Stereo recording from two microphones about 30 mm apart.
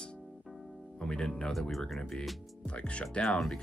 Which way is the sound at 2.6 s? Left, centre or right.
Left.